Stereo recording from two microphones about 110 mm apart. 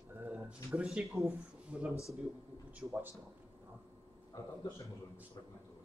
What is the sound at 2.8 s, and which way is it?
Speech, 25° right (ahead or behind).